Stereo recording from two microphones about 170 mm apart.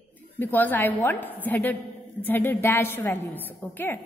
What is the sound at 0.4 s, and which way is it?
A woman's voice, 10° left (ahead or behind).